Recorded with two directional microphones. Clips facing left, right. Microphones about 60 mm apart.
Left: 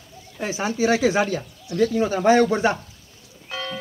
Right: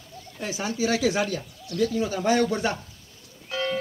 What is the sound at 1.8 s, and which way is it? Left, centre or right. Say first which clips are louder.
Speech: left 5 dB; left.